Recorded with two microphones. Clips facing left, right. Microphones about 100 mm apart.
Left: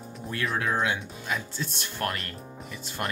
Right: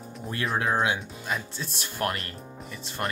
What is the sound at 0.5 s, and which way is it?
Speech, 25° right (ahead or behind).